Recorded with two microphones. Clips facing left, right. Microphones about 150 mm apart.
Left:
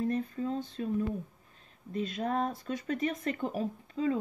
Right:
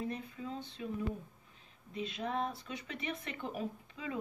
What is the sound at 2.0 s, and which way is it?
Speech, 45° left (ahead or behind).